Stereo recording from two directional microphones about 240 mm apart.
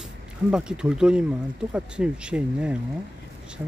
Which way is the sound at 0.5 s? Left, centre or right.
Centre.